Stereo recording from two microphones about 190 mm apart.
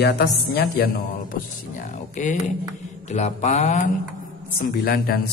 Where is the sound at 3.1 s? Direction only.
35° left (ahead or behind).